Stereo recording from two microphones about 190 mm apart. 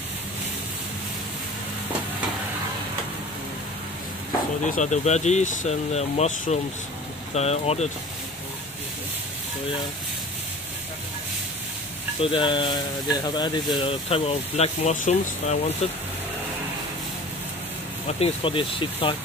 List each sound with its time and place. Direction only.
4.6 s speech: 40° left (ahead or behind)
12.2 s speech: 25° left (ahead or behind)
18.0 s speech: 30° left (ahead or behind)